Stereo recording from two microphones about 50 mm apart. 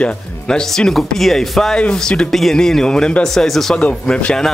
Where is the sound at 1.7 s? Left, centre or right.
Centre.